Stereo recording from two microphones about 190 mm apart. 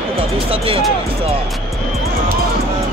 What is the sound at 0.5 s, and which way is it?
Speech, 30° right (ahead or behind).